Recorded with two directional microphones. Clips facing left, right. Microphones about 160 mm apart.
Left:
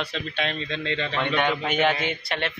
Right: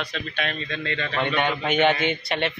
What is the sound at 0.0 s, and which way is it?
A man's voice, 25° left (ahead or behind).